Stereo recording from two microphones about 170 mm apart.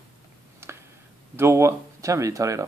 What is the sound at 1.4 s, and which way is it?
Speech, 15° right (ahead or behind).